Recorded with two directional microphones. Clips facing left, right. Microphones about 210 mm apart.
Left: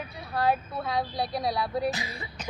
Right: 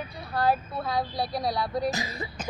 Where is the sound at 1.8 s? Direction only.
40° right (ahead or behind).